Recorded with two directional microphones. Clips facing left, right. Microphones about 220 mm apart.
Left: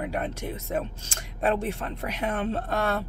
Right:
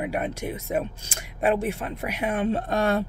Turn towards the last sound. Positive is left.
turn(degrees=-15)  # may be behind; listen again after turning